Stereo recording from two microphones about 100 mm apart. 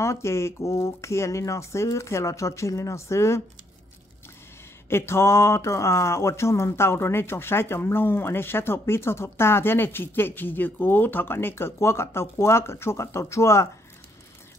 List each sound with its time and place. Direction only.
0.0 s speech: 30° left (ahead or behind)
4.8 s speech: 25° left (ahead or behind)